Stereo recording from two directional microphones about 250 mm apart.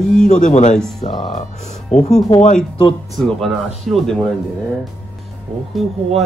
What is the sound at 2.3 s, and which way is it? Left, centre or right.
Speech, left.